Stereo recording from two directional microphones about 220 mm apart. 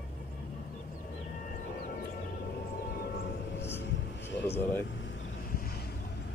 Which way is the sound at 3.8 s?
55° left (ahead or behind).